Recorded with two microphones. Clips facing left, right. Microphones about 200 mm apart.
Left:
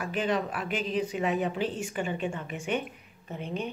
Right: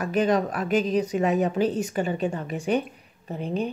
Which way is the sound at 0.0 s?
40° right (ahead or behind).